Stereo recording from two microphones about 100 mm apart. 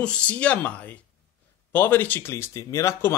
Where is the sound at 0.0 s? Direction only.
10° left (ahead or behind).